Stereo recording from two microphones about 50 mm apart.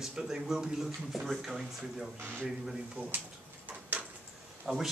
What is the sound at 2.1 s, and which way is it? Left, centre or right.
Speech, right.